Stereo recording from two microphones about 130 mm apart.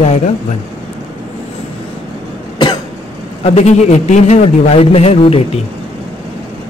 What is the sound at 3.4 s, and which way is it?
A man's voice, 55° left (ahead or behind).